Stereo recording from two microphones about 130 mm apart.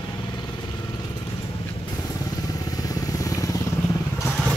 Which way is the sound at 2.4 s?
30° left (ahead or behind).